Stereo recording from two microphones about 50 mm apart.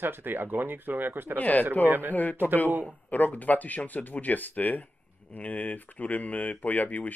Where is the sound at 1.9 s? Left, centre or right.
Right.